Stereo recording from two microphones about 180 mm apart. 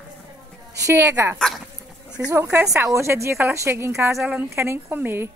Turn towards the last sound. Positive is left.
turn(degrees=-10)  # may be behind; listen again after turning